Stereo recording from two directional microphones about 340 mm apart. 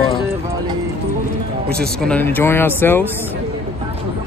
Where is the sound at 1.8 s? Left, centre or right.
Centre.